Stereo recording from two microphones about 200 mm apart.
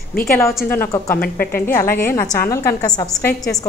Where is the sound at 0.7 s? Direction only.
10° left (ahead or behind).